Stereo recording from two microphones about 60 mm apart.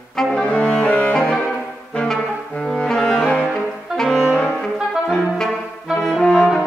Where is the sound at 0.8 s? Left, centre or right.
Left.